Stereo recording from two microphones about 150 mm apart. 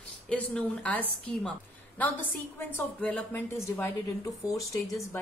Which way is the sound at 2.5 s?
15° left (ahead or behind).